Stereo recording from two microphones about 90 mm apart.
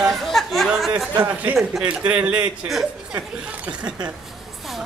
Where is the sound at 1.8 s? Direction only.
15° right (ahead or behind).